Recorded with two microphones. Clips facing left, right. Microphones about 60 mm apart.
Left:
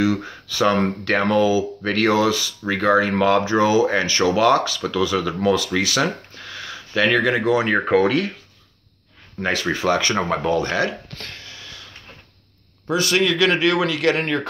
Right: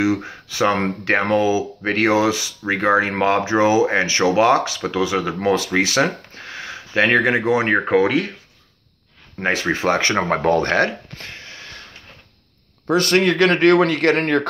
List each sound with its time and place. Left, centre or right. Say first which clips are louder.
0.0 s speech: right 1 dB; right
7.8 s speech: right 1 dB; centre
9.4 s speech: right 2 dB; right
10.3 s speech: right 6 dB; right
11.3 s a sound: right 2 dB; right
12.9 s speech: right 3 dB; right